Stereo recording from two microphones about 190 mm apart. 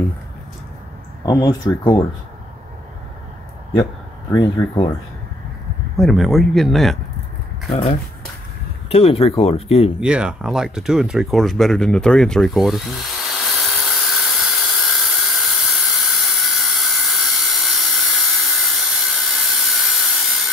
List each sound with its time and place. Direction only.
1.2 s speech: 20° left (ahead or behind)
4.3 s speech: 20° left (ahead or behind)
5.9 s speech: centre (ahead or behind)
8.8 s speech: 30° left (ahead or behind)
9.9 s speech: 5° right (ahead or behind)
13.6 s a sound: centre (ahead or behind)